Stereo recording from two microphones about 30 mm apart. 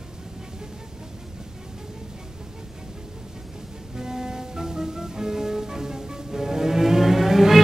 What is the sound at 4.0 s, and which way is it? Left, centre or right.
Music, centre.